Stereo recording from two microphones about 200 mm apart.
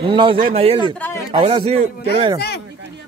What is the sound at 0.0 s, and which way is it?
Speech, 25° right (ahead or behind).